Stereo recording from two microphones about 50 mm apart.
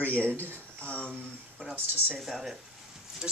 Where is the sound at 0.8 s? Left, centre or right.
Left.